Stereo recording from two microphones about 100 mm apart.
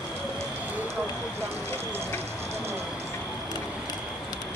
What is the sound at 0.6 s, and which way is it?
Fire, 20° right (ahead or behind).